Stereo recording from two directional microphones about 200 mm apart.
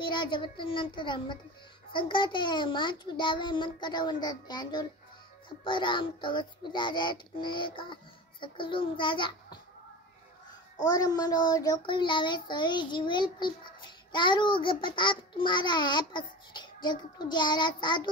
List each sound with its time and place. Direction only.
0.0 s child singing: 25° left (ahead or behind)
10.9 s child singing: 20° left (ahead or behind)